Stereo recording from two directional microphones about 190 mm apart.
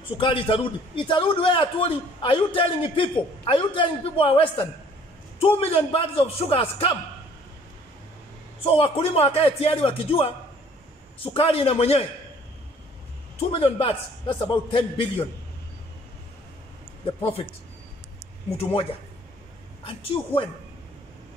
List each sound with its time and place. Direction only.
0.2 s a man's voice: 25° left (ahead or behind)
8.6 s a man's voice: 30° left (ahead or behind)
11.3 s a man's voice: 30° left (ahead or behind)
13.4 s a man's voice: 30° left (ahead or behind)
17.0 s a man's voice: 30° left (ahead or behind)
19.8 s a man's voice: 30° left (ahead or behind)